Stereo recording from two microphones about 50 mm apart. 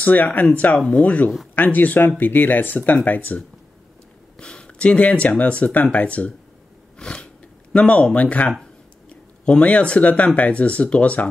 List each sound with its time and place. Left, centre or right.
0.0 s speech: left
4.4 s speech: centre
7.0 s a sound: centre
7.7 s speech: left